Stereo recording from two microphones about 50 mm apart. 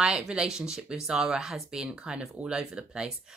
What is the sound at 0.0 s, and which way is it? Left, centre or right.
A woman's voice, centre.